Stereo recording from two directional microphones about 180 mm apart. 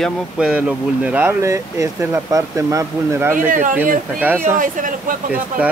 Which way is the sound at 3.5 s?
45° right (ahead or behind).